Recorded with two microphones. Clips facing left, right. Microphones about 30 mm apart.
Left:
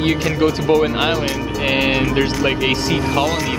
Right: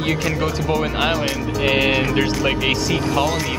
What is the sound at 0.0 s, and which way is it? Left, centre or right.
Speech, centre.